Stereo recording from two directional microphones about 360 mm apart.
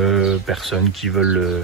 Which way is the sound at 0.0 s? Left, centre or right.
Centre.